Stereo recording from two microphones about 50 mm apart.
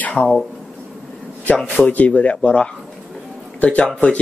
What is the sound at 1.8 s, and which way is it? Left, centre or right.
Speech, left.